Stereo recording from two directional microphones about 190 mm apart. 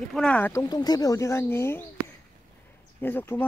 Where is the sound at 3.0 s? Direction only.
10° left (ahead or behind).